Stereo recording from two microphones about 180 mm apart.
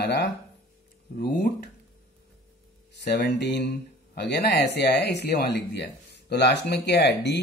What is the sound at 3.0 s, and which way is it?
Speech, 70° left (ahead or behind).